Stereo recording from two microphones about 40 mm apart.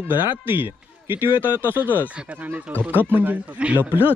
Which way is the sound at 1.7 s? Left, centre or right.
Right.